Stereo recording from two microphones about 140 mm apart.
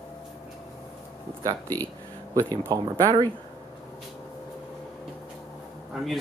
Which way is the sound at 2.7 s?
25° right (ahead or behind).